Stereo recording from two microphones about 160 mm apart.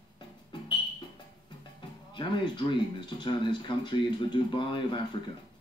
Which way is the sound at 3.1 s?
30° left (ahead or behind).